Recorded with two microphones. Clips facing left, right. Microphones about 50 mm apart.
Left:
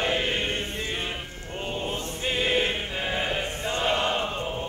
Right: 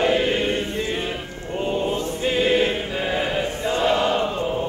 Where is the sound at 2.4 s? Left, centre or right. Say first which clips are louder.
Right 6 dB; left.